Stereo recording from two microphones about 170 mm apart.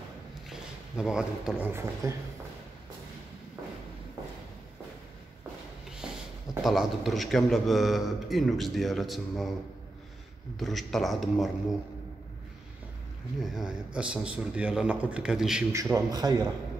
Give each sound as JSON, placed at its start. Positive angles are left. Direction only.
{"t": 0.5, "sound": "speech", "side_deg": -5}
{"t": 6.0, "sound": "a sound", "side_deg": -5}
{"t": 6.6, "sound": "a man's voice", "side_deg": 0}
{"t": 10.6, "sound": "a man's voice", "side_deg": 0}
{"t": 13.4, "sound": "a man's voice", "side_deg": -5}
{"t": 15.7, "sound": "a man's voice", "side_deg": -20}